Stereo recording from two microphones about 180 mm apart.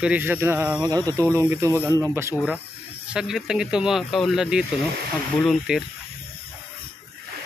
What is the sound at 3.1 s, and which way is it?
Speech, 5° right (ahead or behind).